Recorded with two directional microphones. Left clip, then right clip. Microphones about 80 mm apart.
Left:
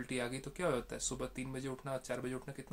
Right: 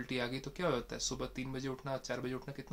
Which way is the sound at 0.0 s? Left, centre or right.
Centre.